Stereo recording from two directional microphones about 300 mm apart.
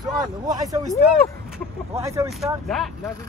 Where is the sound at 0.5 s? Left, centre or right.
Centre.